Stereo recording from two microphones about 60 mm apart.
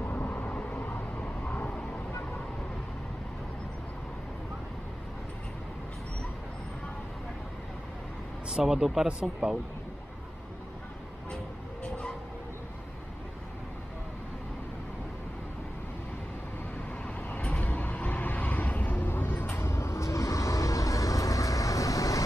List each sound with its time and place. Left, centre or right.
0.0 s vehicle: left
8.5 s speech: centre
17.0 s vehicle: left